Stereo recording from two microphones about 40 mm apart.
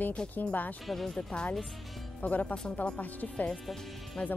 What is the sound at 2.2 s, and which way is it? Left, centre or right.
Speech, left.